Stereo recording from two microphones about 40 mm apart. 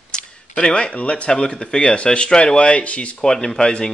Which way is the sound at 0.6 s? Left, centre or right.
Left.